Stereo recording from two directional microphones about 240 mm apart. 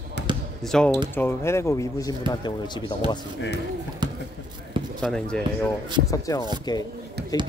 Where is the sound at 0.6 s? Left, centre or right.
Centre.